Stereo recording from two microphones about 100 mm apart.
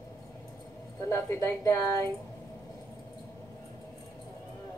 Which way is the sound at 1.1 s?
30° left (ahead or behind).